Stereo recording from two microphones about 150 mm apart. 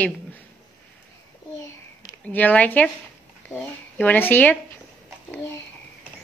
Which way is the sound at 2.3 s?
10° left (ahead or behind).